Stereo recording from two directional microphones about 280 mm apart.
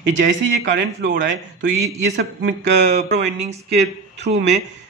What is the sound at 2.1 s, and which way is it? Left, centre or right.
A man's voice, right.